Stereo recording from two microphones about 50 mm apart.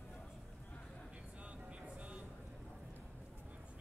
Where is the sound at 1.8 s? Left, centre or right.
Right.